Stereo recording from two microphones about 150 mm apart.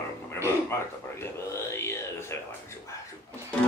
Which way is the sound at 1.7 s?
15° left (ahead or behind).